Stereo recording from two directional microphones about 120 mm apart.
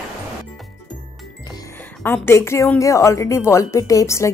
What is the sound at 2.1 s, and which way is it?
A woman's voice, 20° left (ahead or behind).